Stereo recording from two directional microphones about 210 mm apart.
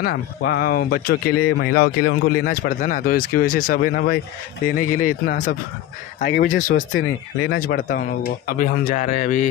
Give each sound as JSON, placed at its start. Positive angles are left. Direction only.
{"t": 0.0, "sound": "speech", "side_deg": 50}
{"t": 6.9, "sound": "speech", "side_deg": 65}
{"t": 7.5, "sound": "speech", "side_deg": 45}